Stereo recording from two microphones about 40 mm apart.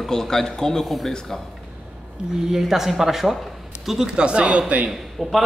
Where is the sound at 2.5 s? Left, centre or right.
Centre.